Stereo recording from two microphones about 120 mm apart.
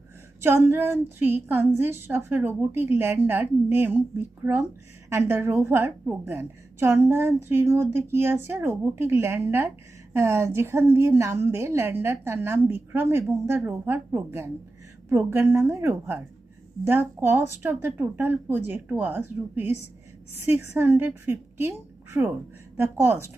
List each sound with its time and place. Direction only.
0.4 s a woman's voice: 20° right (ahead or behind)